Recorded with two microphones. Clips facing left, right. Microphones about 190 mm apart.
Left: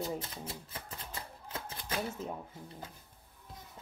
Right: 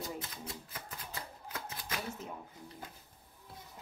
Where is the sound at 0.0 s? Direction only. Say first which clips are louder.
Left 4 dB; 30° left (ahead or behind).